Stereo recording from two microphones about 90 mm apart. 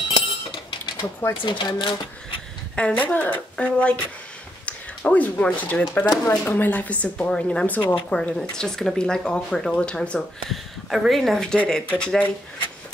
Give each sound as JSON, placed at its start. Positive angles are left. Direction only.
{"t": 0.1, "sound": "a sound", "side_deg": 75}
{"t": 1.4, "sound": "speech", "side_deg": 60}
{"t": 2.7, "sound": "speech", "side_deg": 15}
{"t": 8.1, "sound": "speech", "side_deg": 10}